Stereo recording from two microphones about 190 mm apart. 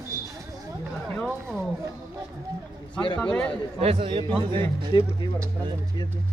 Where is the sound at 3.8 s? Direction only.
30° right (ahead or behind).